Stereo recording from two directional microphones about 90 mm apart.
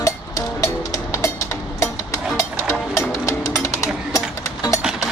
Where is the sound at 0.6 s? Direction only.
35° left (ahead or behind).